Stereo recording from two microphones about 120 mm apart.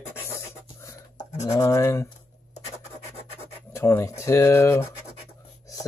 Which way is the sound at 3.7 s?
25° left (ahead or behind).